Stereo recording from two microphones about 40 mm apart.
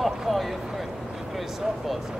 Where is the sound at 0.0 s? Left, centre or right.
Centre.